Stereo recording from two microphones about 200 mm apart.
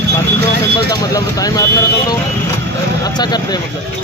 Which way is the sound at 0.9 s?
15° left (ahead or behind).